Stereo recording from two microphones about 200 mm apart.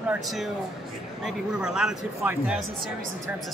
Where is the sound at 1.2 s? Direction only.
5° right (ahead or behind).